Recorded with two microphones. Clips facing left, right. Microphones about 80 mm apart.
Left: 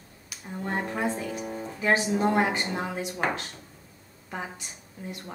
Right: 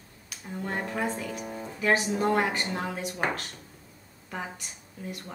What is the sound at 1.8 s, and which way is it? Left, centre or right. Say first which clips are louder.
A woman's voice: left 1 dB; left.